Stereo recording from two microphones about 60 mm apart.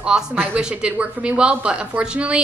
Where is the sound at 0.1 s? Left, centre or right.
Centre.